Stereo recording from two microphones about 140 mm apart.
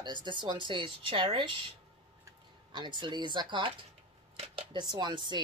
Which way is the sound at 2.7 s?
35° right (ahead or behind).